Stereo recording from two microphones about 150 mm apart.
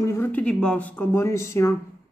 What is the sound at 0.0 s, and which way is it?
Speech, 15° left (ahead or behind).